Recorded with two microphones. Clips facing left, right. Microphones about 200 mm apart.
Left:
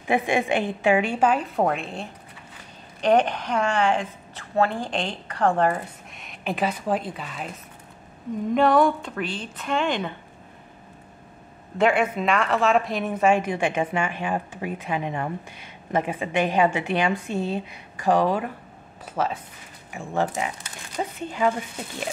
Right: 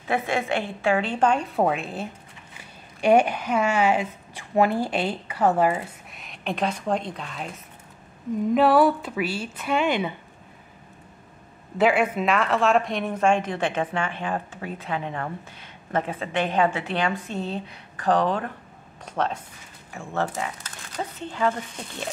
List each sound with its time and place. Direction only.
0.0 s a woman's voice: 15° left (ahead or behind)
8.5 s a woman's voice: 5° right (ahead or behind)
11.8 s speech: centre (ahead or behind)
19.9 s speech: 15° left (ahead or behind)